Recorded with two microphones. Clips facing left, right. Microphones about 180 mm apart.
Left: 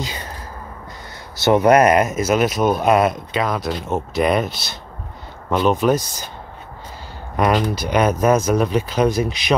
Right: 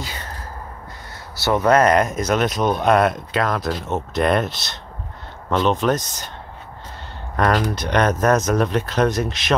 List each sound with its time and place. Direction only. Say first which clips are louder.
0.0 s a sound: left 4 dB; 20° left (ahead or behind)
1.4 s speech: left 3 dB; 20° left (ahead or behind)
7.3 s speech: left 1 dB; 10° left (ahead or behind)